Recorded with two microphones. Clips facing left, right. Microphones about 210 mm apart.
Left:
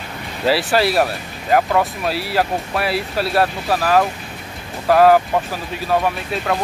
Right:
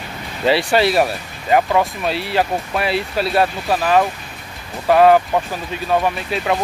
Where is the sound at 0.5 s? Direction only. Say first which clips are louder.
Right 1 dB; centre (ahead or behind).